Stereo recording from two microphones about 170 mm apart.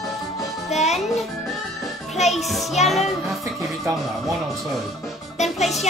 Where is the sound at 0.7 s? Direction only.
40° left (ahead or behind).